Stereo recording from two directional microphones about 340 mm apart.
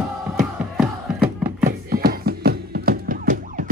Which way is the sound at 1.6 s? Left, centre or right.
Right.